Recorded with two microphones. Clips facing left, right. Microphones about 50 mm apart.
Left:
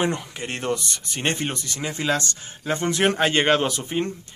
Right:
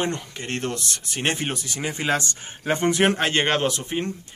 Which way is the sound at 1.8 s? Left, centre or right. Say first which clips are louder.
Even; right.